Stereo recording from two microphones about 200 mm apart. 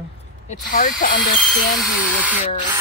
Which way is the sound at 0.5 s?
45° left (ahead or behind).